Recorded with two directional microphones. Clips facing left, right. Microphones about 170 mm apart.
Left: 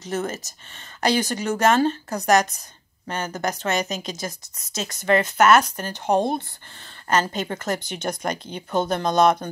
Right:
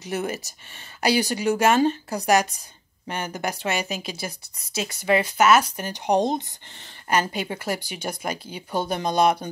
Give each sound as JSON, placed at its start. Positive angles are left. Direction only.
{"t": 0.0, "sound": "speech", "side_deg": -15}